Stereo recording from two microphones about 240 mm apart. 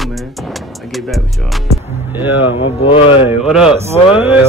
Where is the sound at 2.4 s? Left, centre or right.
Left.